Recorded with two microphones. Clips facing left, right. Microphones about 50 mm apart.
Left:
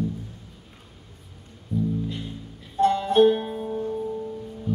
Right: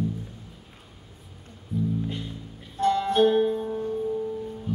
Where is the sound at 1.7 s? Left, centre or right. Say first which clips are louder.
Left 2 dB; centre.